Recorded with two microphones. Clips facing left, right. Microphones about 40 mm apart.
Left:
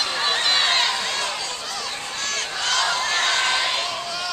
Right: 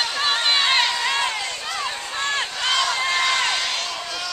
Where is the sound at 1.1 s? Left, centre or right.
Right.